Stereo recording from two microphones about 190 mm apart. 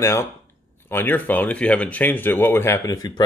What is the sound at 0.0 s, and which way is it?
Speech, 15° left (ahead or behind).